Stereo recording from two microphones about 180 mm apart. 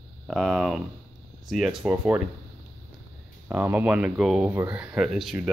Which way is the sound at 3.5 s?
10° right (ahead or behind).